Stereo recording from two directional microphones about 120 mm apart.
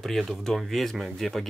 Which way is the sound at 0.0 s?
Centre (ahead or behind).